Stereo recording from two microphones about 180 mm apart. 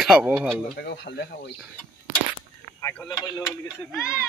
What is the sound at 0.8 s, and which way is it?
Speech, 70° left (ahead or behind).